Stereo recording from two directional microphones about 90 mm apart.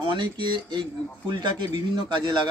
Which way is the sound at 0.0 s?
65° right (ahead or behind).